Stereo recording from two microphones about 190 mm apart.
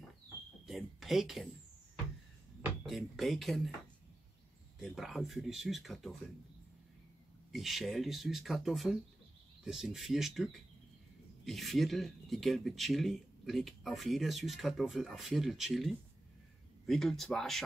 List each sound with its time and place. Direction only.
0.7 s a sound: centre (ahead or behind)
2.6 s speech: centre (ahead or behind)
4.7 s speech: centre (ahead or behind)
7.5 s speech: centre (ahead or behind)